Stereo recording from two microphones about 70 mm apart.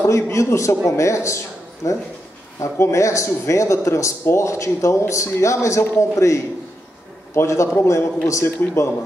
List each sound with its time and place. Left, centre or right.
0.0 s speech: left
2.6 s a man's voice: left